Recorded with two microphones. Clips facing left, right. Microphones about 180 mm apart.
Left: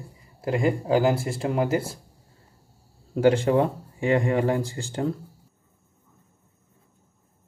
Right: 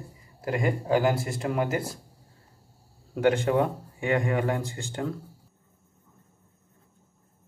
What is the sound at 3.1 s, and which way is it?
Speech, 30° left (ahead or behind).